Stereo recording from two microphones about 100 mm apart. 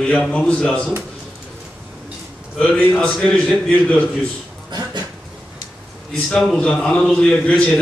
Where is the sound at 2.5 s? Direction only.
10° left (ahead or behind).